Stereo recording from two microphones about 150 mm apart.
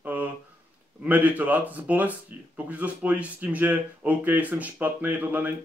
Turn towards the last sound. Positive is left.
turn(degrees=-10)  # may be behind; listen again after turning